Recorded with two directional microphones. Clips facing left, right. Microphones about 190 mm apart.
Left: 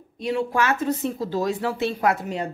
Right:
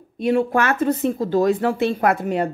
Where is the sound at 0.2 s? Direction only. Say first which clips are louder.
Right 5 dB; 55° right (ahead or behind).